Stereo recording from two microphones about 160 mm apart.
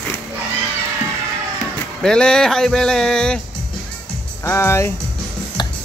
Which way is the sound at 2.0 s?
5° left (ahead or behind).